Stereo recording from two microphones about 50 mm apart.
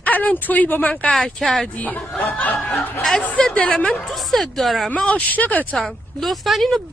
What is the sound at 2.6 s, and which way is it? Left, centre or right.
Speech, centre.